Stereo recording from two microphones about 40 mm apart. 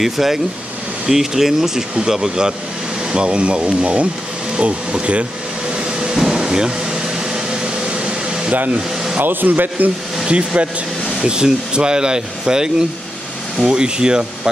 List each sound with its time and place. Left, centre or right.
0.0 s speech: centre; by 5.2 s right
5.7 s train: centre
6.1 s air conditioning: centre
9.2 s a man's voice: right
10.2 s speech: right